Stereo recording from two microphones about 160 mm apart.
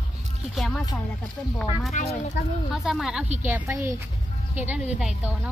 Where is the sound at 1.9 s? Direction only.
50° left (ahead or behind).